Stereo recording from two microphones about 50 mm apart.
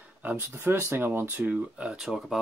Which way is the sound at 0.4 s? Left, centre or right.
Right.